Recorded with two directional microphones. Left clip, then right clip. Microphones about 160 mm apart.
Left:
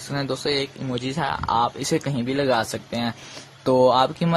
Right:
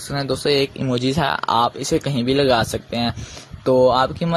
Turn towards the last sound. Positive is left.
turn(degrees=0)  # may be behind; listen again after turning